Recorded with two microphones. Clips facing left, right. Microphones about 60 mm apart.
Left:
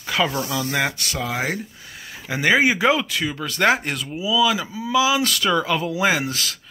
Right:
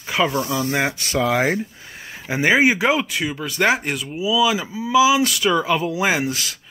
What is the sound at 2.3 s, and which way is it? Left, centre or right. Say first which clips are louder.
Speech: right 2 dB; centre.